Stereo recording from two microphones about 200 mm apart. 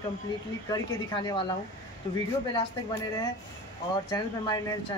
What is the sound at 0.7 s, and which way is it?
Speech, 20° left (ahead or behind).